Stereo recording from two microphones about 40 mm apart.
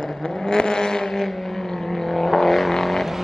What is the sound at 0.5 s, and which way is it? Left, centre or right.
Vehicle, centre.